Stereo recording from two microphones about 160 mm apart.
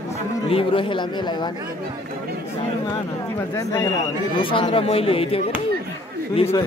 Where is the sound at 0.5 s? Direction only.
35° left (ahead or behind).